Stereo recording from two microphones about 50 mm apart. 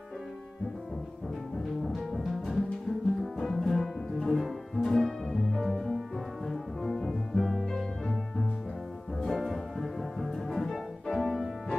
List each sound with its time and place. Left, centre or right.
1.9 s music: centre
5.6 s music: centre
6.4 s brass instrument: centre
7.7 s music: centre